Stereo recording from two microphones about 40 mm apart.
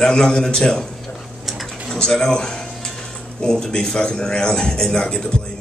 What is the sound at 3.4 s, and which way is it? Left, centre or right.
A man's voice, centre.